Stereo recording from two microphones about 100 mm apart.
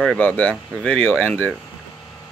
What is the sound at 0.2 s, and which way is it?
Speech, 15° left (ahead or behind).